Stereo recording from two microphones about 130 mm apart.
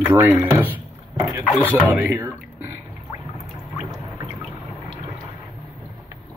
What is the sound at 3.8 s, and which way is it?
Pour, 30° right (ahead or behind).